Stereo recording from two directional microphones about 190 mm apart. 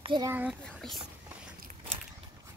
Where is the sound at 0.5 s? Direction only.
Centre (ahead or behind).